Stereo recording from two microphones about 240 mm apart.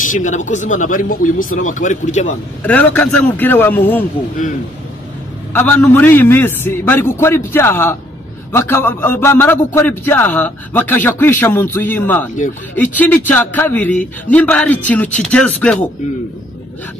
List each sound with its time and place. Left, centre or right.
0.0 s speech: left
2.6 s a man's voice: centre
5.5 s a man's voice: centre